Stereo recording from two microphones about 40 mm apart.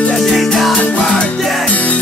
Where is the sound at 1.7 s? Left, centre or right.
Left.